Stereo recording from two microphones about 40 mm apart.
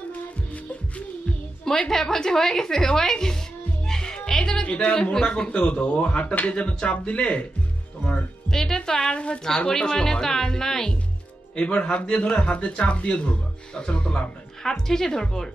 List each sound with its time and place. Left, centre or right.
1.9 s a woman's voice: centre
3.8 s music: centre
4.7 s speech: left
8.5 s music: centre
8.9 s a woman's voice: left
11.5 s speech: left
14.6 s a woman's voice: centre